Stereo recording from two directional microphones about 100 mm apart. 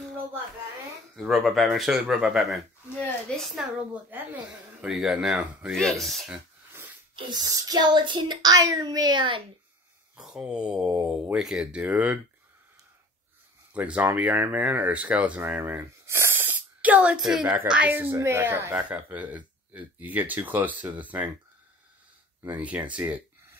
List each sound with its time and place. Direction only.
1.3 s speech: centre (ahead or behind)
3.7 s speech: 20° right (ahead or behind)
4.8 s speech: 5° right (ahead or behind)
7.4 s speech: 40° right (ahead or behind)
10.1 s speech: 5° right (ahead or behind)
13.7 s speech: 15° right (ahead or behind)
18.1 s speech: 25° right (ahead or behind)
22.5 s speech: 15° right (ahead or behind)